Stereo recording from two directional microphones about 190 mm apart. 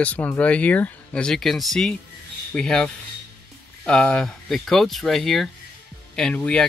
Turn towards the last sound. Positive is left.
turn(degrees=5)  # may be behind; listen again after turning